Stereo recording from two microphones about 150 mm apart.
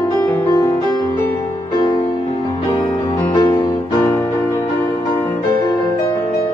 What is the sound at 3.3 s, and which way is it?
Music, 25° left (ahead or behind).